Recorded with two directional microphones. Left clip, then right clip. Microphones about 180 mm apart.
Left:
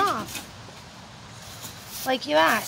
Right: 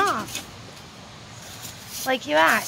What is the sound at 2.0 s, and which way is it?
Speech, 5° left (ahead or behind).